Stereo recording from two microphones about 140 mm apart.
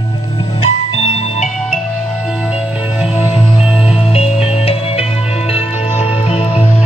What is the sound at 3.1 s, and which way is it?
Music, 40° left (ahead or behind).